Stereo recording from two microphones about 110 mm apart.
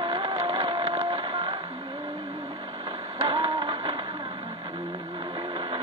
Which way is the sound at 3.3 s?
45° right (ahead or behind).